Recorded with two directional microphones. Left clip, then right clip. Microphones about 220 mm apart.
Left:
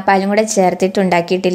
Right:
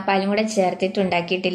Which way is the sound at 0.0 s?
35° left (ahead or behind).